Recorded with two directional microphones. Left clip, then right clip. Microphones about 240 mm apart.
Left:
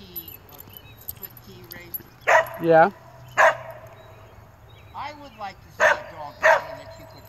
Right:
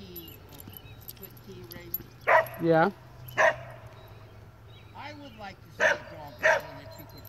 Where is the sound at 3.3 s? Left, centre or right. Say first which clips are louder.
Left 6 dB; centre.